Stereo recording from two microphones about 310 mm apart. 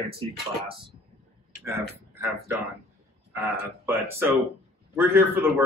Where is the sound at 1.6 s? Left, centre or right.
Centre.